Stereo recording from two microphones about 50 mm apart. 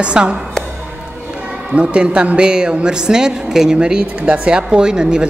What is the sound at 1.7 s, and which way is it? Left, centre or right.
Speech, right.